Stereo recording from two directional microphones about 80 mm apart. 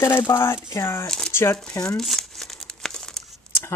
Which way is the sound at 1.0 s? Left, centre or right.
Centre.